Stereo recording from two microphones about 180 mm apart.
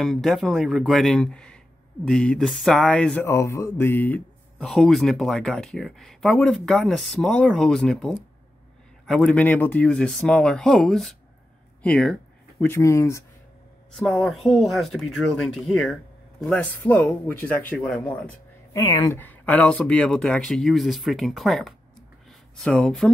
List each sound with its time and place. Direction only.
0.0 s speech: centre (ahead or behind)
3.3 s speech: 15° left (ahead or behind)
13.9 s speech: 5° left (ahead or behind)
18.8 s speech: 20° left (ahead or behind)
19.1 s speech: 10° left (ahead or behind)